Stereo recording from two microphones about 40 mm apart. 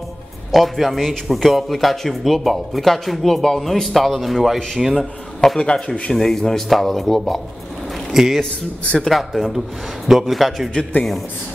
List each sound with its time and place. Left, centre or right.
0.5 s a man's voice: centre
5.6 s a man's voice: left
6.1 s a man's voice: centre
8.1 s speech: centre
8.8 s a man's voice: left
9.1 s a man's voice: centre